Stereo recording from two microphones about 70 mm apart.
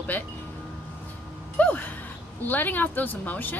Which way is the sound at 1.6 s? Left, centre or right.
Left.